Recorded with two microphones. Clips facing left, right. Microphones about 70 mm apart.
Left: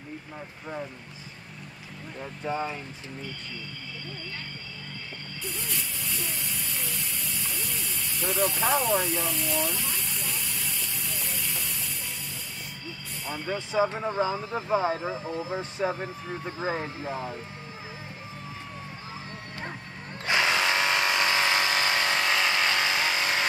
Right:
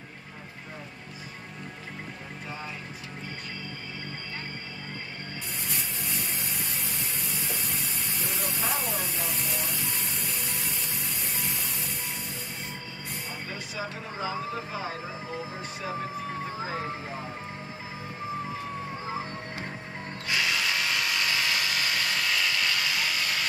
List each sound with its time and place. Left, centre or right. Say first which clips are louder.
2.4 s speech: left 10 dB; left
5.8 s a sound: even; right
8.4 s speech: left 8 dB; left
9.3 s speech: left 4 dB; right
13.5 s speech: left 13 dB; left
20.2 s tools: left 4 dB; left